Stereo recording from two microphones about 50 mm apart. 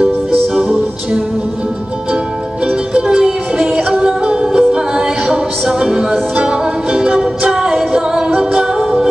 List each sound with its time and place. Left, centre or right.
2.9 s music: centre